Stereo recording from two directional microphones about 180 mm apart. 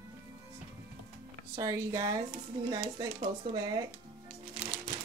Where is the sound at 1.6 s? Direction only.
20° right (ahead or behind).